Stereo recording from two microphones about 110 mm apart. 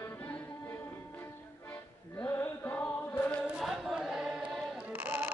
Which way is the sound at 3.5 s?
Centre (ahead or behind).